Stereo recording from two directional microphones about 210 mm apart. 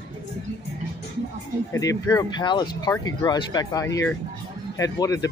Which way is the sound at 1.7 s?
15° left (ahead or behind).